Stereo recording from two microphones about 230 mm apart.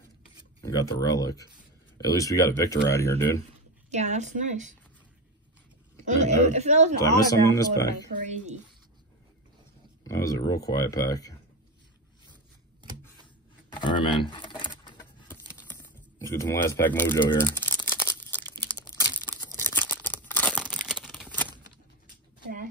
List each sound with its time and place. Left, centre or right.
0.7 s speech: centre
3.9 s speech: right
6.0 s speech: right
7.0 s speech: centre
10.0 s speech: centre
13.7 s a sound: left
15.2 s a sound: centre
18.7 s tearing: centre
20.6 s a sound: centre